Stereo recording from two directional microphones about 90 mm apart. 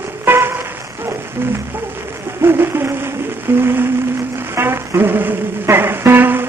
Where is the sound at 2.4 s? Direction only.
25° right (ahead or behind).